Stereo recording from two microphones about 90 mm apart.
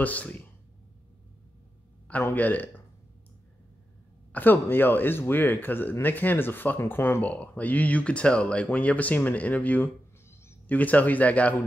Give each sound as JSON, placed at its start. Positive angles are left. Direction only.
{"t": 0.0, "sound": "speech", "side_deg": 20}
{"t": 2.2, "sound": "speech", "side_deg": 20}
{"t": 4.3, "sound": "speech", "side_deg": 20}